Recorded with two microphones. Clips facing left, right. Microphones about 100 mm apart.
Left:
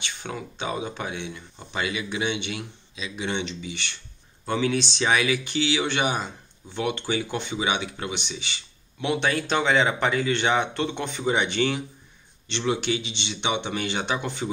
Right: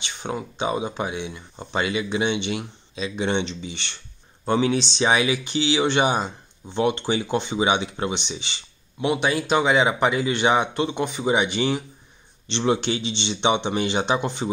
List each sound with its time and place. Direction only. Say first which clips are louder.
0.0 s speech: right 4 dB; 20° right (ahead or behind)
1.7 s speech: right 5 dB; 30° right (ahead or behind)
9.0 s speech: right 3 dB; 15° right (ahead or behind)
12.4 s speech: right 3 dB; 25° right (ahead or behind)